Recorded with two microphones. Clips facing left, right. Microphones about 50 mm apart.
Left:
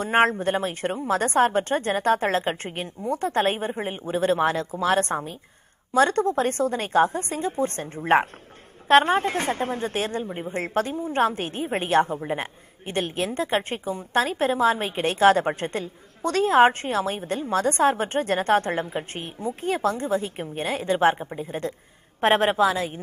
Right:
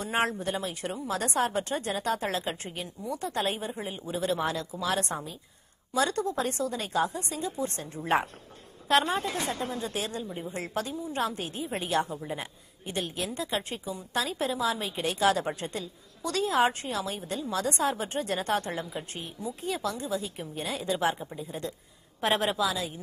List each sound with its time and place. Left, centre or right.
0.0 s a woman's voice: left